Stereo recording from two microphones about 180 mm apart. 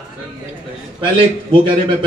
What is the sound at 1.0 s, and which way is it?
Speech, 25° right (ahead or behind).